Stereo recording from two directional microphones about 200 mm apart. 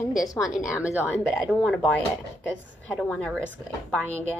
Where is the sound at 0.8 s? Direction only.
10° left (ahead or behind).